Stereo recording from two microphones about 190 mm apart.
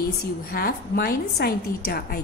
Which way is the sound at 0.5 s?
55° left (ahead or behind).